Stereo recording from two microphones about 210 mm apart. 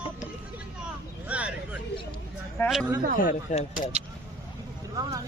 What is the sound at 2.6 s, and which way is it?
Speech, 10° left (ahead or behind).